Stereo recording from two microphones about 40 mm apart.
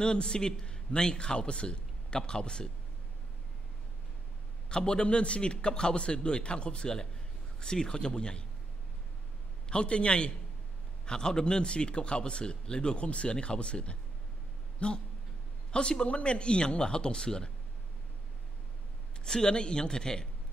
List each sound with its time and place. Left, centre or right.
0.0 s a man's voice: left
4.6 s speech: left
9.7 s speech: left
19.2 s speech: left